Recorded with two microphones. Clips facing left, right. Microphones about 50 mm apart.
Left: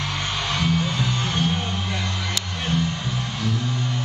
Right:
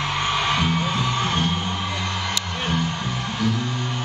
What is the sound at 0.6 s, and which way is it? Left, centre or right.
Music, right.